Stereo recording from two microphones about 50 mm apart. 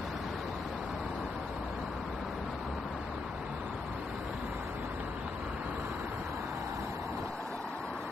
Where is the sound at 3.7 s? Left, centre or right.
Centre.